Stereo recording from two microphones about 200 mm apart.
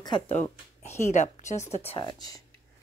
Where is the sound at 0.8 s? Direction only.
35° left (ahead or behind).